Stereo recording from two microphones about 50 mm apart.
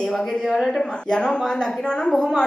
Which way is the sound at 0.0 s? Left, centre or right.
Centre.